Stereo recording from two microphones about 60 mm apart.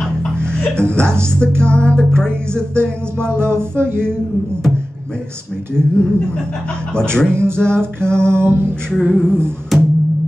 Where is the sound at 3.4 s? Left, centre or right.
Right.